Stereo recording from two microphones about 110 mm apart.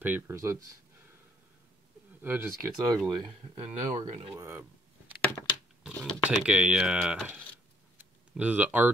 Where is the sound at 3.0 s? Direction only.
Centre (ahead or behind).